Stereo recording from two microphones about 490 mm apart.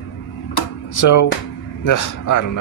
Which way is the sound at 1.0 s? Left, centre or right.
Left.